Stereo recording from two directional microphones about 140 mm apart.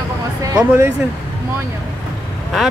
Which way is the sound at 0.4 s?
25° right (ahead or behind).